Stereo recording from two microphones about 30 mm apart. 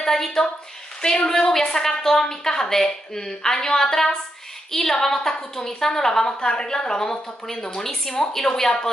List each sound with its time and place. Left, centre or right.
0.0 s a woman's voice: centre
1.0 s speech: left
1.4 s a woman's voice: centre
6.2 s speech: left